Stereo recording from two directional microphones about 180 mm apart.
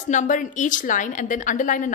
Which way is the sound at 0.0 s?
45° left (ahead or behind).